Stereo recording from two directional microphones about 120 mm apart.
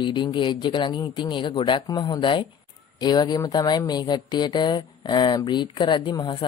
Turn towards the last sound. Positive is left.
turn(degrees=40)  # may be behind; listen again after turning